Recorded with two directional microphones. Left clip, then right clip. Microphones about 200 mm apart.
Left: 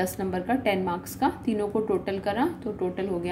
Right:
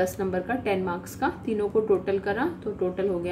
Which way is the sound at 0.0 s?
25° left (ahead or behind).